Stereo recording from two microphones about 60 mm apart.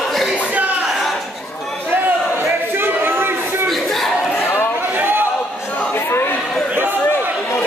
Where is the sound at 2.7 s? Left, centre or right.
Right.